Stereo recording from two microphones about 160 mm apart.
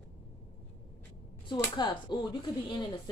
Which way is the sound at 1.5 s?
30° left (ahead or behind).